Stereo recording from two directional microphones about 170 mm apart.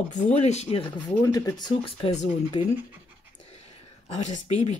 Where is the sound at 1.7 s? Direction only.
30° left (ahead or behind).